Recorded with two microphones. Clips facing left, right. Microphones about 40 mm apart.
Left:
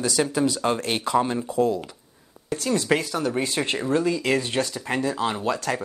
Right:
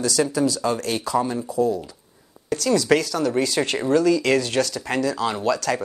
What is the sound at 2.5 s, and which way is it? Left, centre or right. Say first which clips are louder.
Speech: right 4 dB; left.